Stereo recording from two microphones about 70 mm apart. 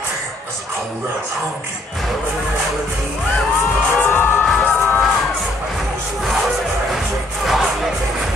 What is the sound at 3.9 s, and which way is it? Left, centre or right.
Music, left.